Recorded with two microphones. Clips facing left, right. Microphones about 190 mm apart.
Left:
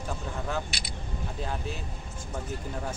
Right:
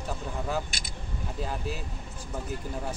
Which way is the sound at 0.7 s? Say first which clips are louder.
Left 1 dB; 45° right (ahead or behind).